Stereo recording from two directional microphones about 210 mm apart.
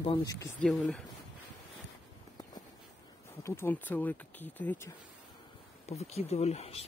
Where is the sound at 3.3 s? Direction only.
10° left (ahead or behind).